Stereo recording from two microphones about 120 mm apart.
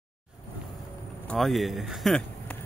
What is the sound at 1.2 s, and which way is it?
Speech, 5° left (ahead or behind).